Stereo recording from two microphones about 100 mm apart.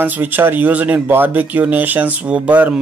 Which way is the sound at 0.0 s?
20° right (ahead or behind).